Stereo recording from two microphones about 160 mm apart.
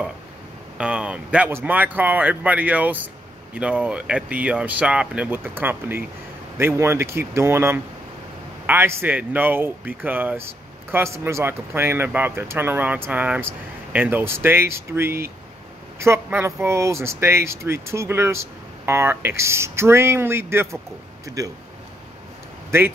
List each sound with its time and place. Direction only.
0.7 s speech: 5° right (ahead or behind)